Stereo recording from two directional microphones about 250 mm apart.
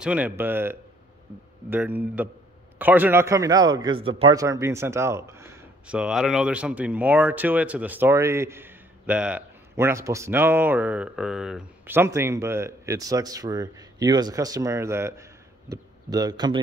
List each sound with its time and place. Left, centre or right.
0.0 s a man's voice: centre